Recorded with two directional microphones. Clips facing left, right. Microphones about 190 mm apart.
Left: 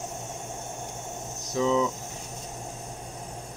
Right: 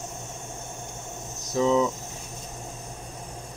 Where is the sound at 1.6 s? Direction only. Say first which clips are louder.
Right 2 dB; 40° right (ahead or behind).